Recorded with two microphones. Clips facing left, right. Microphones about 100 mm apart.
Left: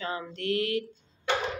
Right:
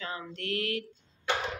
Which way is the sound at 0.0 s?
25° left (ahead or behind).